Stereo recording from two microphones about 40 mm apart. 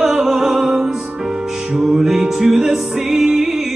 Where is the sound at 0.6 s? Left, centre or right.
Right.